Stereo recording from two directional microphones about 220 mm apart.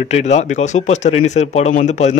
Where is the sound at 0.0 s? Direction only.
30° left (ahead or behind).